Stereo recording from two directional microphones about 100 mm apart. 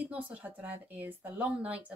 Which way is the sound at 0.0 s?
10° right (ahead or behind).